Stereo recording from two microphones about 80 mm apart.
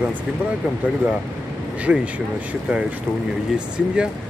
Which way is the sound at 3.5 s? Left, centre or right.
Centre.